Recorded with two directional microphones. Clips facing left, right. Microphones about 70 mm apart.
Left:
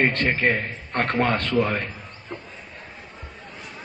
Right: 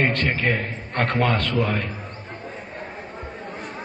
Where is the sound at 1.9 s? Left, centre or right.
Right.